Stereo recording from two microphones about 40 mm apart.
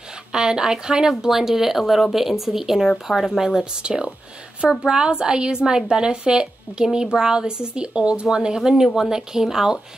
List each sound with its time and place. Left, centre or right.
0.3 s a woman's voice: centre